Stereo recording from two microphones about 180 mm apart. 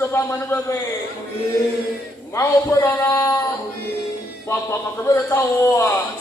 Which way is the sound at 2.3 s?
15° left (ahead or behind).